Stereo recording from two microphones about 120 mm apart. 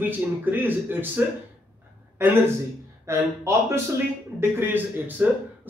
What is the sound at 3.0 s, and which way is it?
A man's voice, 25° right (ahead or behind).